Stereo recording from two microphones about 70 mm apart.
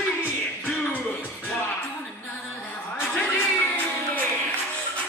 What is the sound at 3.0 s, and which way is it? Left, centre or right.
Music, left.